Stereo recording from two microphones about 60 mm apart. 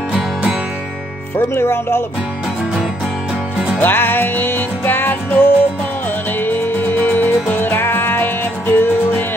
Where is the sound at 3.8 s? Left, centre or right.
Left.